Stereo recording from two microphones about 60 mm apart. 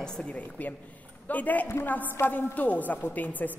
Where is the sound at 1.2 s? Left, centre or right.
Left.